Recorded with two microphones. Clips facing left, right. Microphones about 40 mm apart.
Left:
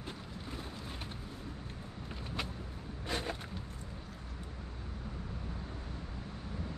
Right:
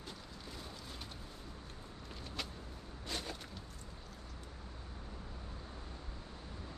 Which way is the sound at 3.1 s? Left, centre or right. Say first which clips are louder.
Left 6 dB; left.